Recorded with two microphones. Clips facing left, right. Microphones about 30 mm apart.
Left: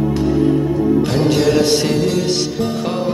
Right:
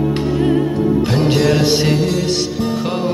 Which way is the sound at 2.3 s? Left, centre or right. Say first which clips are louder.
Even; centre.